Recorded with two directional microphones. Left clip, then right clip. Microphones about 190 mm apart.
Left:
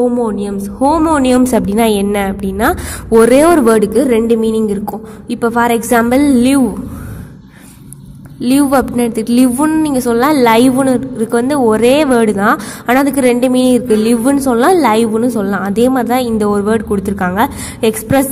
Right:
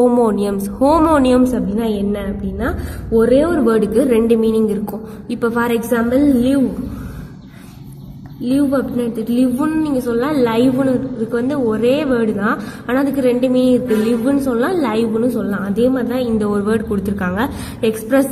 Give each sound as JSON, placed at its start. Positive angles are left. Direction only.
{"t": 0.0, "sound": "speech", "side_deg": 5}
{"t": 1.5, "sound": "a woman's voice", "side_deg": 40}
{"t": 8.4, "sound": "a woman's voice", "side_deg": 40}